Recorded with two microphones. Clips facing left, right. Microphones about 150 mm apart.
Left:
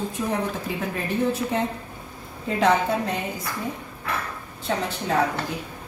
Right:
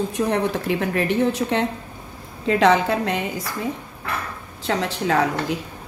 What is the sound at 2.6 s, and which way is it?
Speech, 90° right.